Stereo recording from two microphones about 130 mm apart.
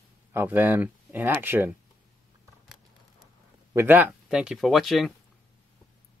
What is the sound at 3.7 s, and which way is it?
Speech, 15° right (ahead or behind).